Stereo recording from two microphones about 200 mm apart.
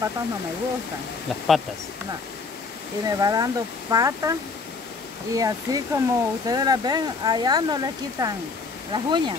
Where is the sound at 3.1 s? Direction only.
15° right (ahead or behind).